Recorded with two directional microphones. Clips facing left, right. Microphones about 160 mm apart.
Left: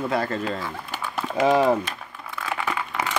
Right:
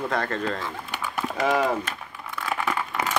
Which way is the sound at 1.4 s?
20° left (ahead or behind).